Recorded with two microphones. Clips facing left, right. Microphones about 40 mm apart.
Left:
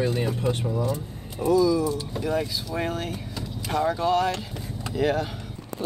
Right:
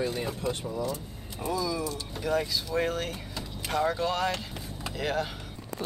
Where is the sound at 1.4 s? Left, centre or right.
Centre.